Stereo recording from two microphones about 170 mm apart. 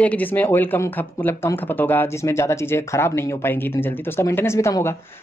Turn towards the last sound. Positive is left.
turn(degrees=15)  # may be behind; listen again after turning